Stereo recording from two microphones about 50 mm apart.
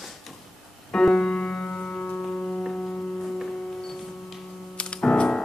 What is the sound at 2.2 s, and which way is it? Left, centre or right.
Music, left.